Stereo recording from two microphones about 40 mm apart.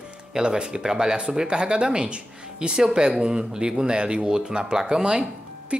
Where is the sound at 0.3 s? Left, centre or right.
Centre.